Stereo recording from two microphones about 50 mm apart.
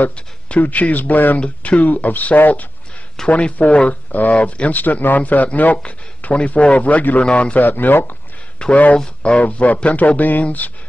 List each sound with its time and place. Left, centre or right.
0.6 s speech: left
7.2 s speech: centre
7.5 s speech: left
8.6 s speech: centre; by 10.7 s left